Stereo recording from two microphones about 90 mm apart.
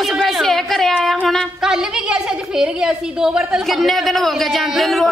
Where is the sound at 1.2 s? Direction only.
Centre (ahead or behind).